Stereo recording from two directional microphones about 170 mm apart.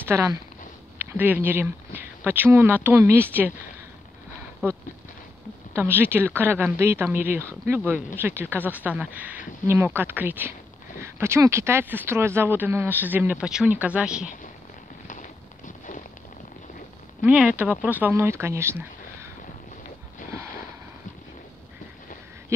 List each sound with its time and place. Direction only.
0.0 s speech: 15° right (ahead or behind)
4.6 s speech: 10° right (ahead or behind)
15.0 s a sound: 50° left (ahead or behind)
17.2 s speech: 5° right (ahead or behind)